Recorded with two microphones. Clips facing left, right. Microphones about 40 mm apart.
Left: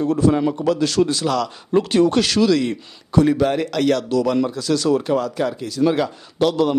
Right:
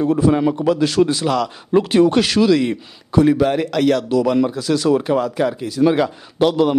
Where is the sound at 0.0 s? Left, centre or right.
Centre.